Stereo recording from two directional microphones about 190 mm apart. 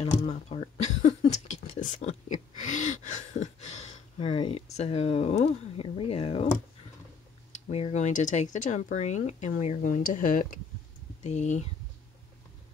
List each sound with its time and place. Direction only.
0.0 s speech: 30° left (ahead or behind)
1.5 s a sound: 40° left (ahead or behind)
7.6 s speech: 35° left (ahead or behind)